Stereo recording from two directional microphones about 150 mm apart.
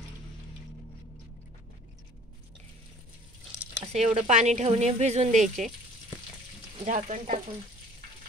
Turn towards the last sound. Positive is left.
turn(degrees=-55)  # may be behind; listen again after turning